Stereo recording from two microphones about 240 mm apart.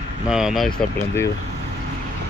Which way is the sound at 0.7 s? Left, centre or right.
Centre.